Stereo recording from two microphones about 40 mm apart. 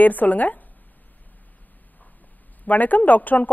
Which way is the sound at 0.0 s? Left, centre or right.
Left.